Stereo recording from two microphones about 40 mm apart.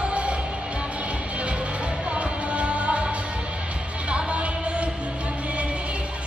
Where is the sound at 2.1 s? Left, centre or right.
Right.